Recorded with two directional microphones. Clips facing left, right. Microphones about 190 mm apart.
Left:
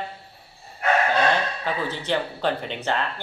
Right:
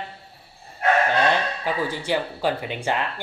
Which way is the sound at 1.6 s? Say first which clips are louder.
Right 2 dB; 10° right (ahead or behind).